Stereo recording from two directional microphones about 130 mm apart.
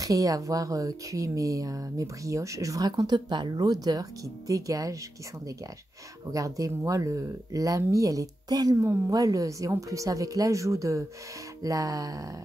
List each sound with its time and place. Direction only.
0.0 s speech: 25° right (ahead or behind)
6.3 s speech: 25° right (ahead or behind)